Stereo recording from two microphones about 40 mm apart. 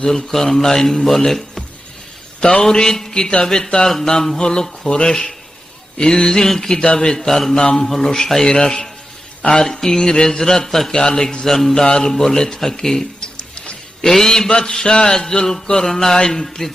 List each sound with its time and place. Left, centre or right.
0.0 s mantra: centre
4.4 s speech: left
5.9 s mantra: centre
9.4 s speech: left
9.7 s mantra: centre
13.2 s a sound: left
14.0 s mantra: centre
14.5 s mantra: centre
16.4 s a man's voice: centre